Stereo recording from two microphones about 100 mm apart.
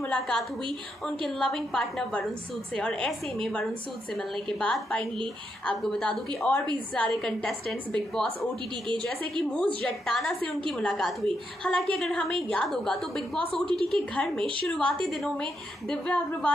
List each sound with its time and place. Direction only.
0.0 s a woman's voice: 15° left (ahead or behind)